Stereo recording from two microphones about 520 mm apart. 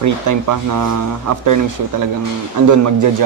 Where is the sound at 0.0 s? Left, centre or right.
Right.